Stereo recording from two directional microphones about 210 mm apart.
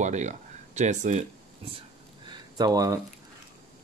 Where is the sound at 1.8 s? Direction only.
20° right (ahead or behind).